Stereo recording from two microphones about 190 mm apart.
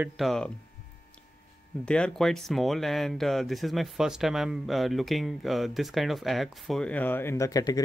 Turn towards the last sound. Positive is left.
turn(degrees=20)  # may be behind; listen again after turning